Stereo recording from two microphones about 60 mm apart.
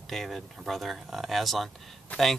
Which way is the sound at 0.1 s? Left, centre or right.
Centre.